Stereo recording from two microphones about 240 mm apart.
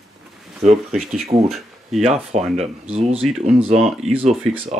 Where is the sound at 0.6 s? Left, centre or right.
Right.